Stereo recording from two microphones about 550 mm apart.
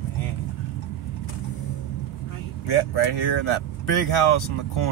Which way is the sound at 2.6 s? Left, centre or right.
Left.